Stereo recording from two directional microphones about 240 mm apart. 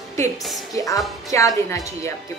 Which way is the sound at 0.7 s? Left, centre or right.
Centre.